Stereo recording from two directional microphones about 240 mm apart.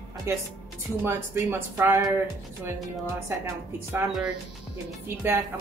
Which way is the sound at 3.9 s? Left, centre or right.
Centre.